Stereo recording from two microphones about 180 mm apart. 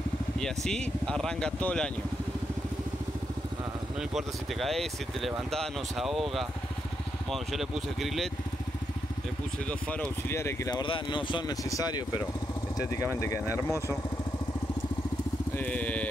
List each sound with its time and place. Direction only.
0.4 s speech: 5° left (ahead or behind)
4.1 s speech: centre (ahead or behind)
9.7 s speech: 10° left (ahead or behind)
13.2 s speech: 15° left (ahead or behind)
15.5 s speech: 10° left (ahead or behind)